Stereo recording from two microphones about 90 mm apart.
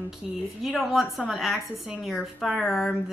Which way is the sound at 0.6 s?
Centre (ahead or behind).